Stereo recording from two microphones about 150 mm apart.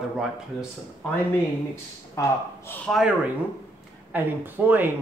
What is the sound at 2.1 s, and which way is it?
Speech, 15° left (ahead or behind).